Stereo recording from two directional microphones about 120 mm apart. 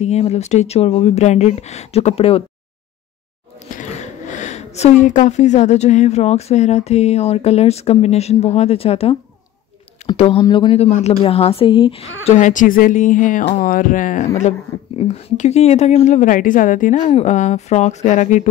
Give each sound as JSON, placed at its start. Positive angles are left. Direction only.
{"t": 0.0, "sound": "speech", "side_deg": 65}
{"t": 3.7, "sound": "speech", "side_deg": 85}
{"t": 10.4, "sound": "speech", "side_deg": 35}
{"t": 10.7, "sound": "speech", "side_deg": 65}
{"t": 11.2, "sound": "speech", "side_deg": 55}
{"t": 13.6, "sound": "a sound", "side_deg": 90}
{"t": 15.0, "sound": "a woman's voice", "side_deg": 70}